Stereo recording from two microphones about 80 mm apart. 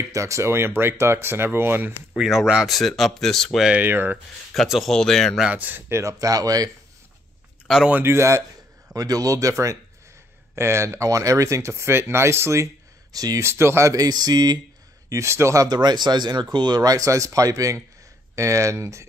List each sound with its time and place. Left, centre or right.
0.1 s speech: right
2.1 s speech: centre
3.7 s speech: right
4.6 s speech: centre
5.4 s speech: centre
5.9 s speech: right
7.6 s speech: centre
7.9 s speech: right
8.9 s speech: right
13.1 s speech: right
13.4 s speech: right
13.9 s speech: right
15.0 s speech: right
15.7 s speech: right